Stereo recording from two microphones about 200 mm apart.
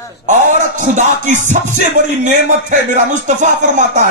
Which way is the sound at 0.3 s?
40° right (ahead or behind).